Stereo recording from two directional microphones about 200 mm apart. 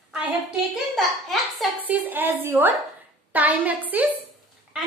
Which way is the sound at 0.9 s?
Centre (ahead or behind).